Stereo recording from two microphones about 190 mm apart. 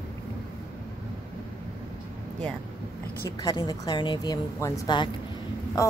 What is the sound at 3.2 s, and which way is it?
A woman's voice, 20° left (ahead or behind).